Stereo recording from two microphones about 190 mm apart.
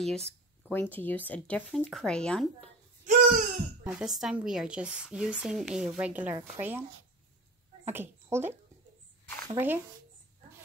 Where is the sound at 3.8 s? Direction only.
5° right (ahead or behind).